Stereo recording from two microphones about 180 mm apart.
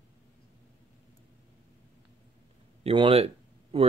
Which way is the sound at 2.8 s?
30° right (ahead or behind).